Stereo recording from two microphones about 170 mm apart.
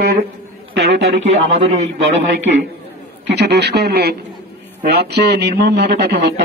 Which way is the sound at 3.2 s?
80° right.